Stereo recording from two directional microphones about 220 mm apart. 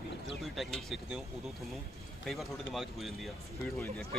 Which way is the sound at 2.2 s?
Centre (ahead or behind).